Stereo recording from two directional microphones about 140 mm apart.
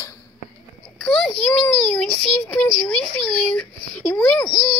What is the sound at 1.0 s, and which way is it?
Child singing, 5° left (ahead or behind).